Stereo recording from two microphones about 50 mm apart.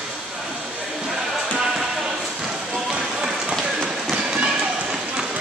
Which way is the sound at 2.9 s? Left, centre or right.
Centre.